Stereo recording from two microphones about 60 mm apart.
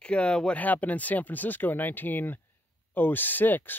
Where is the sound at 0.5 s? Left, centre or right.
Left.